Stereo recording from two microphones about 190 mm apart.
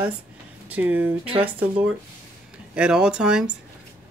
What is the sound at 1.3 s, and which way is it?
Speech, 30° right (ahead or behind).